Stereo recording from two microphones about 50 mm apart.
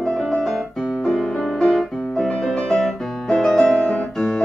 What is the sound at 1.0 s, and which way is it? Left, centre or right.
Music, centre.